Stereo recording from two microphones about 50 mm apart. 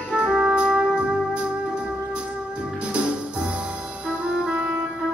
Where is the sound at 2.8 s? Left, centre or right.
Right.